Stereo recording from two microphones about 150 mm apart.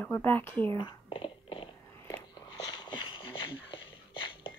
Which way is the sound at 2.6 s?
30° left (ahead or behind).